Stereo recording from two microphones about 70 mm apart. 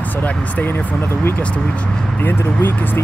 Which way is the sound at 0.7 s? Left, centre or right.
Left.